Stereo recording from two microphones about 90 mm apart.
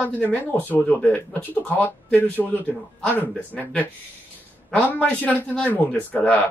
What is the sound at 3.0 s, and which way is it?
A child's voice, 20° left (ahead or behind).